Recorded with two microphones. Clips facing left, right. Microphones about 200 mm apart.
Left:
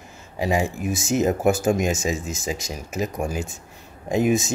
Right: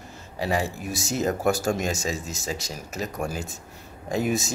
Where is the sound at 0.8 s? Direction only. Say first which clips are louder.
Left 6 dB; centre (ahead or behind).